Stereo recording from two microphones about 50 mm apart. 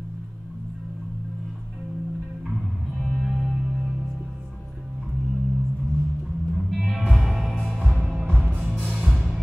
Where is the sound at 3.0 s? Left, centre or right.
Centre.